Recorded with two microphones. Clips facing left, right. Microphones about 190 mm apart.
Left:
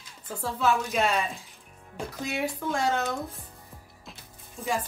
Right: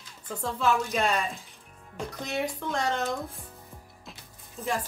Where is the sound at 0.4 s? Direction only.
5° left (ahead or behind).